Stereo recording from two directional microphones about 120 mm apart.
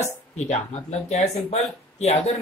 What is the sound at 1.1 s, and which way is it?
Speech, 60° left (ahead or behind).